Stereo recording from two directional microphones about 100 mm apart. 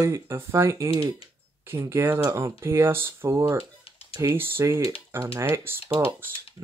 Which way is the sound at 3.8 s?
70° left (ahead or behind).